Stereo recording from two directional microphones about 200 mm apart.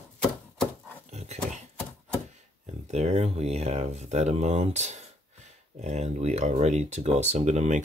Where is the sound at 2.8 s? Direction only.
35° right (ahead or behind).